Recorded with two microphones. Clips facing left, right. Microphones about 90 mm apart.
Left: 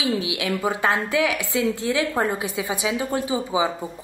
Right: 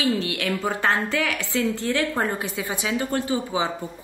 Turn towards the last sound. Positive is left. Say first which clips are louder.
# left 1 dB
turn(degrees=15)  # may be behind; listen again after turning